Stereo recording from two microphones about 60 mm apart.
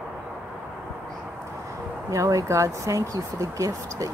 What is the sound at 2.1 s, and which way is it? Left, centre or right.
Speech, right.